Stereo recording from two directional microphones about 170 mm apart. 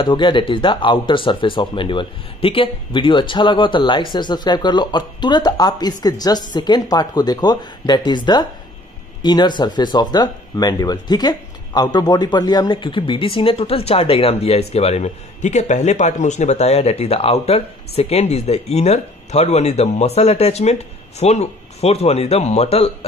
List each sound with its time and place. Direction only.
0.0 s speech: 30° left (ahead or behind)